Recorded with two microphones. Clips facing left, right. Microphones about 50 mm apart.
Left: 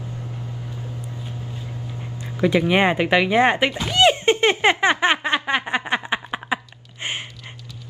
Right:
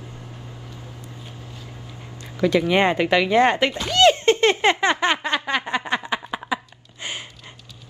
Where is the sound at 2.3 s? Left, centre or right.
Centre; by 7.2 s left.